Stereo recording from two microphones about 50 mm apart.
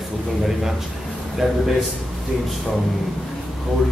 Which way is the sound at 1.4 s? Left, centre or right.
Centre.